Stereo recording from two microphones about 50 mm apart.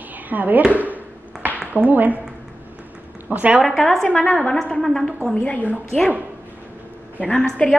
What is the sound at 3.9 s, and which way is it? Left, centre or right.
Speech, centre.